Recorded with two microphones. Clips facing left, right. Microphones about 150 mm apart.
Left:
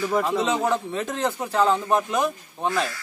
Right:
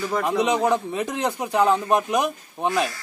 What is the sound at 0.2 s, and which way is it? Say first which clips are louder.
A man's voice: right 2 dB; 15° right (ahead or behind).